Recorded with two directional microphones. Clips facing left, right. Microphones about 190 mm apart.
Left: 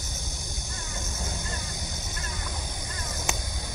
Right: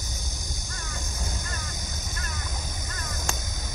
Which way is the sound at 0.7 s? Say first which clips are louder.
Left 1 dB; 15° left (ahead or behind).